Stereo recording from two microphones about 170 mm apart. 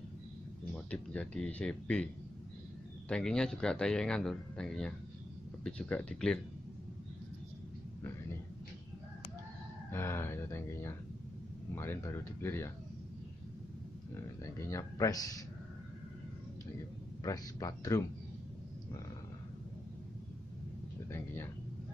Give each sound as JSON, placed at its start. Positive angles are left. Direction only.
{"t": 0.8, "sound": "speech", "side_deg": 5}
{"t": 3.1, "sound": "speech", "side_deg": 5}
{"t": 9.8, "sound": "speech", "side_deg": 15}
{"t": 14.1, "sound": "speech", "side_deg": 15}
{"t": 17.2, "sound": "speech", "side_deg": 20}
{"t": 21.1, "sound": "speech", "side_deg": 15}